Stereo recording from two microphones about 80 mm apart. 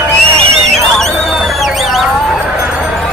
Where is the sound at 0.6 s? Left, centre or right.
Centre.